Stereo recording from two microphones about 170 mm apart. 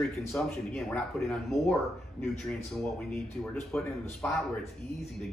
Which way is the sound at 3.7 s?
15° left (ahead or behind).